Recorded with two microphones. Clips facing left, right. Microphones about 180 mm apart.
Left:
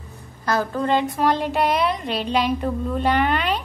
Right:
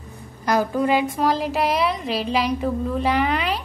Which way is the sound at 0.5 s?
10° right (ahead or behind).